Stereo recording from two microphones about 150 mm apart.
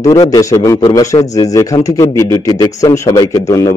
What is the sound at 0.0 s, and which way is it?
A man's voice, 20° left (ahead or behind).